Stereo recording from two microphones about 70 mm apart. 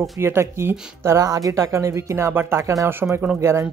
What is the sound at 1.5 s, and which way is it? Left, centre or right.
Speech, right.